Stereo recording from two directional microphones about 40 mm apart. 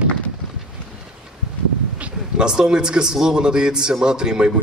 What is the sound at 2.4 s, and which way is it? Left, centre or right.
A man's voice, centre.